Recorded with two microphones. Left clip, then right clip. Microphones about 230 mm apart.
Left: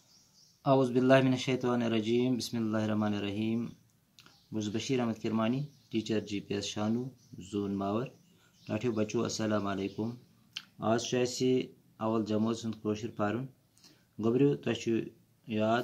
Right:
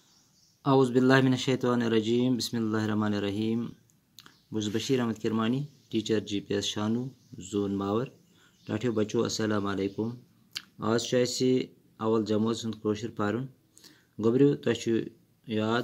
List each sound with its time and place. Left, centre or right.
0.6 s speech: centre